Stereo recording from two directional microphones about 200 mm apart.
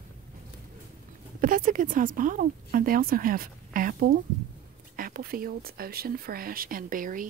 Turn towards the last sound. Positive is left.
turn(degrees=-40)  # may be behind; listen again after turning